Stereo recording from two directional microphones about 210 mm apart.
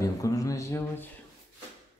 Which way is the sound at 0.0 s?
15° left (ahead or behind).